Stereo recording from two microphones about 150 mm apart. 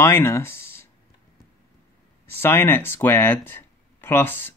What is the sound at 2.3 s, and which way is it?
Speech, 15° left (ahead or behind).